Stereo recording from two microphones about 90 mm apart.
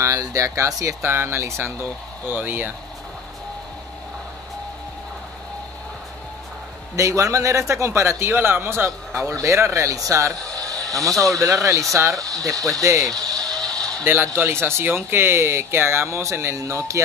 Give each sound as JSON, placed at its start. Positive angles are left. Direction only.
{"t": 0.0, "sound": "speech", "side_deg": -40}
{"t": 1.0, "sound": "speech", "side_deg": -25}
{"t": 7.0, "sound": "speech", "side_deg": -35}
{"t": 13.5, "sound": "a sound", "side_deg": 5}
{"t": 14.0, "sound": "speech", "side_deg": -20}